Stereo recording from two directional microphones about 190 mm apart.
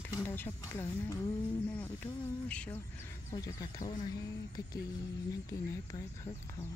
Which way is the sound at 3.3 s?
15° left (ahead or behind).